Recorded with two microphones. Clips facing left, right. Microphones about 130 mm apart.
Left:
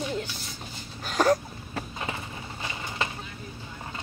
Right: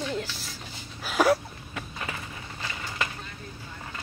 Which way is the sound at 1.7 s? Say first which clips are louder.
Left 2 dB; 25° left (ahead or behind).